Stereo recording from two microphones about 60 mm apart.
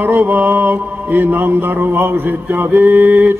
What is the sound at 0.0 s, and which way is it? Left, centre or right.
Mantra, right.